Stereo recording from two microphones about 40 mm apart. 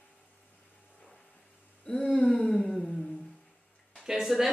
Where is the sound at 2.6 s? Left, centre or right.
Centre.